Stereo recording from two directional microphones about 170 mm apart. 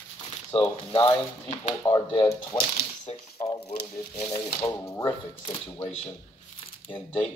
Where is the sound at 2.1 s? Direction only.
30° left (ahead or behind).